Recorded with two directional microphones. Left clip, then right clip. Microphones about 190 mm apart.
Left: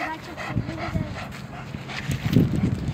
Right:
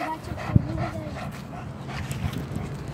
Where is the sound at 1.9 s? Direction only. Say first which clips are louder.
Left 9 dB; centre (ahead or behind).